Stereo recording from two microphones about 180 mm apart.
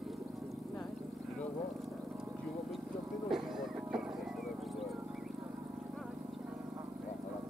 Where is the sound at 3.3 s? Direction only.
Centre (ahead or behind).